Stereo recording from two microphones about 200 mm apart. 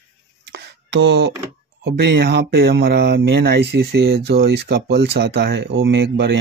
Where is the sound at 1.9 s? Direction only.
55° right (ahead or behind).